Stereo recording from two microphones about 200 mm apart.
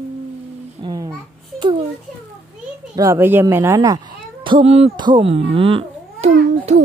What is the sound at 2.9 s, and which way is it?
Speech, 15° right (ahead or behind).